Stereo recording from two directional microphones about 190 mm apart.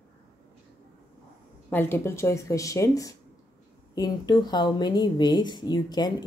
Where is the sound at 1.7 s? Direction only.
10° left (ahead or behind).